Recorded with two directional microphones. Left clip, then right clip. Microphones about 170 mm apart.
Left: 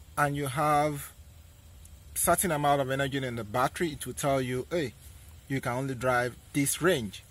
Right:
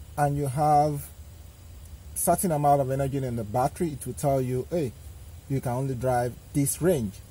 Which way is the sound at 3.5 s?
30° left (ahead or behind).